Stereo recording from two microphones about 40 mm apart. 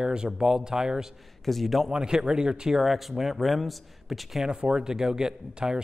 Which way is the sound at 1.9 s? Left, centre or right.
Centre.